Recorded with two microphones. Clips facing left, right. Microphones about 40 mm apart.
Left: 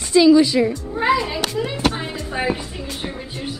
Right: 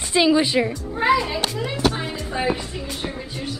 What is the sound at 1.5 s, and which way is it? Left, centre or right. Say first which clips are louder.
Music: left 3 dB; centre.